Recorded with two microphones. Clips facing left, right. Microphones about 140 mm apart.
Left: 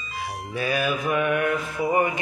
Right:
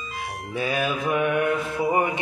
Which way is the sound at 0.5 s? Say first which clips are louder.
Even; 20° right (ahead or behind).